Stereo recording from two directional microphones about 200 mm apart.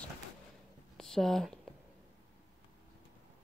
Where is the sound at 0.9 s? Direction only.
Centre (ahead or behind).